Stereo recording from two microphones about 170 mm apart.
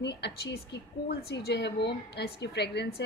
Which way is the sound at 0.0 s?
80° left.